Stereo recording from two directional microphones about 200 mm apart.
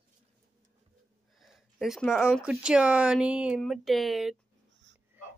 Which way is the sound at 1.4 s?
Centre (ahead or behind).